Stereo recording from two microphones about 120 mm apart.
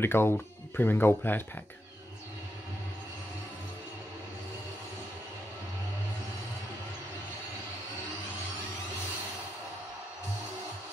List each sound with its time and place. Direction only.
0.0 s speech: 20° left (ahead or behind)